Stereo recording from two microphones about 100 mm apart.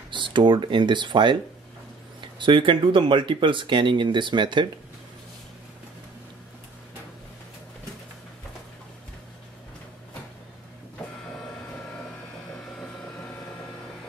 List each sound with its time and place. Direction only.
0.1 s speech: 55° right (ahead or behind)